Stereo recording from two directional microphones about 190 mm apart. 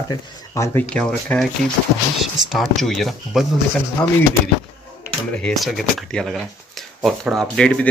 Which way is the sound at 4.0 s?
20° left (ahead or behind).